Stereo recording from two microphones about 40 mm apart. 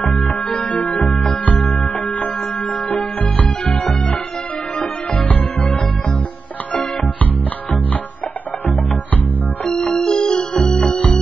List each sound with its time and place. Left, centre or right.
0.0 s music: left
0.5 s music: left
9.7 s music: left